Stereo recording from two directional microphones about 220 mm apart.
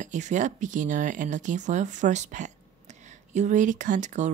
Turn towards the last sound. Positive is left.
turn(degrees=-35)  # may be behind; listen again after turning